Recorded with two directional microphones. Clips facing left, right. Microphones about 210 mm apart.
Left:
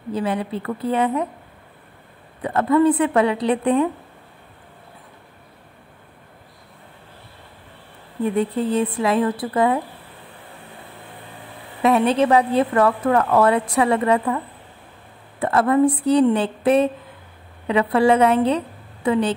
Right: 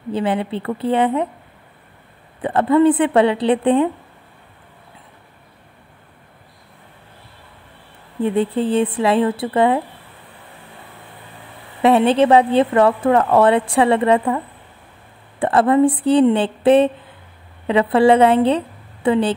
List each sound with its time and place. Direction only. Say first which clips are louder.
0.1 s a woman's voice: right 3 dB; 30° right (ahead or behind)
2.4 s a woman's voice: right 3 dB; 30° right (ahead or behind)
8.2 s a woman's voice: right 3 dB; 30° right (ahead or behind)
11.8 s a woman's voice: right 3 dB; 30° right (ahead or behind)